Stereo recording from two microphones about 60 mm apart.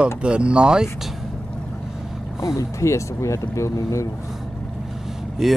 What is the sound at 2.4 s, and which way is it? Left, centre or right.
Speech, left.